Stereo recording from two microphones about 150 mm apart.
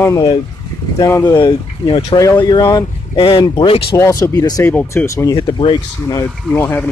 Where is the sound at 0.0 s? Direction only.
20° left (ahead or behind); by 2.1 s 35° left (ahead or behind).